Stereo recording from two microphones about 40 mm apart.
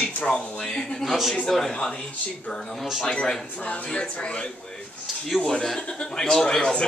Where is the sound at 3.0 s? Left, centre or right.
Left.